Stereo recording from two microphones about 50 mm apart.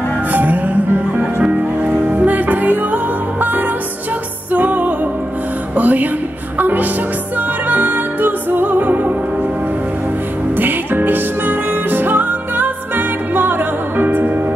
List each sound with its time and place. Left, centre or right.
0.3 s music: right
10.5 s music: right